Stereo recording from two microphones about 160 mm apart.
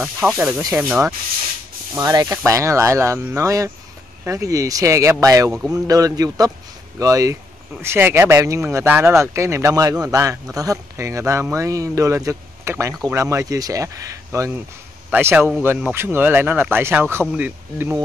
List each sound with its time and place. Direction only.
0.0 s speech: 5° right (ahead or behind)
2.0 s a man's voice: 25° right (ahead or behind)